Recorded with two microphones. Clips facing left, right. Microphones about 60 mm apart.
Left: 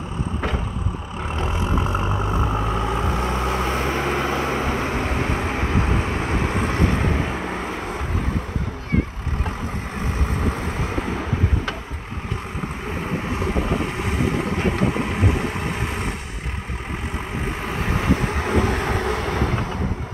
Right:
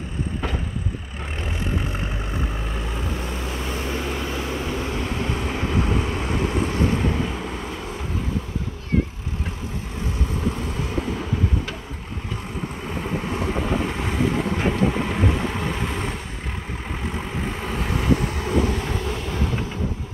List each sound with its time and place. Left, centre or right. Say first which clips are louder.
2.8 s vehicle: left 6 dB; left
10.5 s vehicle: left 2 dB; left
15.0 s vehicle: even; centre
17.5 s vehicle: left 3 dB; left